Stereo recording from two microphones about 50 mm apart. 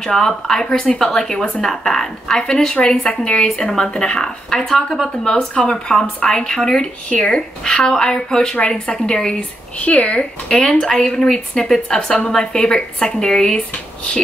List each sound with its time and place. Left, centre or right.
0.0 s speech: centre
9.8 s speech: left
10.8 s speech: centre